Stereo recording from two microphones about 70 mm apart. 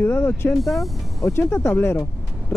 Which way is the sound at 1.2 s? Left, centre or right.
Left.